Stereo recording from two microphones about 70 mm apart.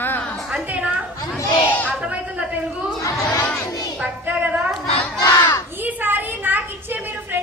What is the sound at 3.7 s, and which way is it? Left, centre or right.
Child singing, left.